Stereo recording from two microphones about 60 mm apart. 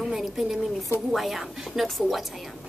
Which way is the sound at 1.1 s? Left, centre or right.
Centre.